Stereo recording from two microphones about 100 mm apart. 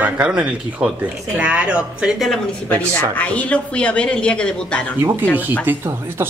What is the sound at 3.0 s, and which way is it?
Speech, 15° left (ahead or behind).